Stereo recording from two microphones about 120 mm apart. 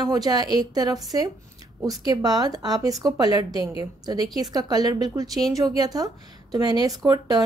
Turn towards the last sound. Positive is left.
turn(degrees=-35)  # may be behind; listen again after turning